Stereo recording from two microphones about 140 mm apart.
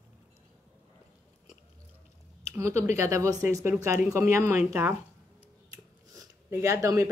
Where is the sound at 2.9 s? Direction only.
20° right (ahead or behind).